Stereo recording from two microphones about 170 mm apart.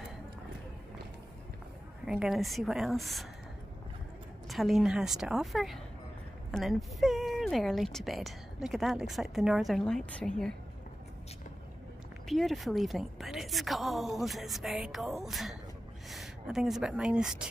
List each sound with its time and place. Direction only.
2.0 s speech: centre (ahead or behind)
4.5 s speech: centre (ahead or behind)
12.3 s speech: centre (ahead or behind)